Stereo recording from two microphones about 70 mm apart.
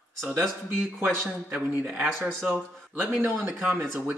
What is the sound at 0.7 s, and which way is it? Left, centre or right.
Speech, centre.